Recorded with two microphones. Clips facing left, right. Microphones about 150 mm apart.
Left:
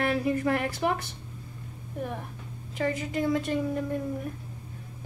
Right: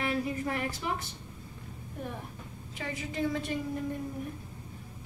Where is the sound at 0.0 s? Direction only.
60° left (ahead or behind).